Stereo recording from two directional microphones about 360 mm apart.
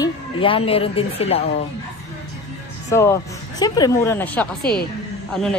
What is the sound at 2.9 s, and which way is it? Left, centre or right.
A woman's voice, centre.